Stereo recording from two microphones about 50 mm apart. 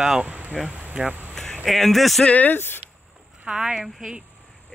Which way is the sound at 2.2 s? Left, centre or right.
Left.